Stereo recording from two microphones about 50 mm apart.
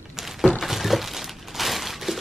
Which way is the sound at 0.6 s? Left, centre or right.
Centre.